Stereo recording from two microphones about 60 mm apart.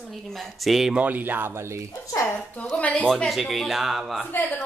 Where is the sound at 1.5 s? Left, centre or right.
Right.